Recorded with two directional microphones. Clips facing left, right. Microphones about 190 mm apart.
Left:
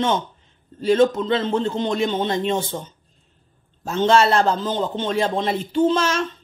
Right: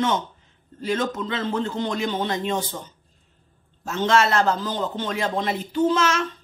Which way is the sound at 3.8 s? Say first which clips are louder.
Left 4 dB; 30° left (ahead or behind).